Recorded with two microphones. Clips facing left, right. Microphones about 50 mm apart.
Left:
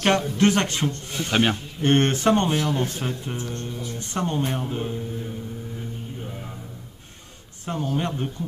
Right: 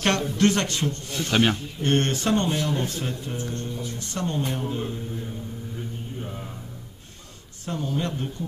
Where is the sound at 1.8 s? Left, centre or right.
Left.